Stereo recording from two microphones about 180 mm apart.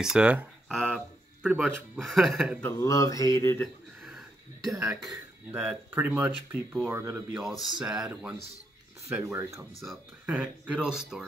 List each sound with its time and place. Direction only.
0.0 s a sound: 5° right (ahead or behind)
2.0 s speech: centre (ahead or behind)
2.6 s speech: 20° left (ahead or behind)
3.6 s a sound: centre (ahead or behind)
4.6 s speech: centre (ahead or behind)
7.8 s speech: 5° right (ahead or behind)